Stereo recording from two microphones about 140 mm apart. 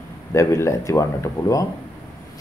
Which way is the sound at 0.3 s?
20° left (ahead or behind).